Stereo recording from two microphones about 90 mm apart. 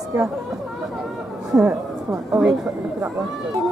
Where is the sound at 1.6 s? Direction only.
35° right (ahead or behind).